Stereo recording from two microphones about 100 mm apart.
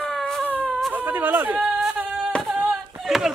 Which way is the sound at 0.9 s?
20° right (ahead or behind).